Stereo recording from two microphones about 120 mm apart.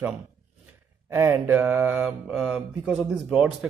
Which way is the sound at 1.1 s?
20° right (ahead or behind).